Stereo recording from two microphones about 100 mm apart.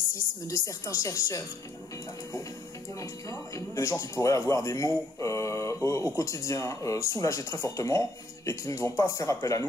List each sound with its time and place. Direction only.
0.5 s speech: 30° left (ahead or behind)
3.0 s speech: 35° left (ahead or behind)